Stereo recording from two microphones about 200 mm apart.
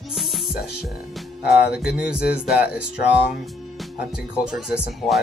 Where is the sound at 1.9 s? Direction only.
5° right (ahead or behind).